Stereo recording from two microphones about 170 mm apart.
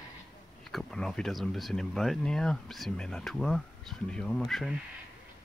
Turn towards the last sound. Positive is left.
turn(degrees=0)  # may be behind; listen again after turning